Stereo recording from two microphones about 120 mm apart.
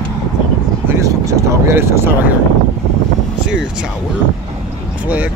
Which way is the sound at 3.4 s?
5° right (ahead or behind).